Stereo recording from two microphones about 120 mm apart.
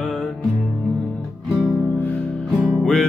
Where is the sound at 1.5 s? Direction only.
20° left (ahead or behind).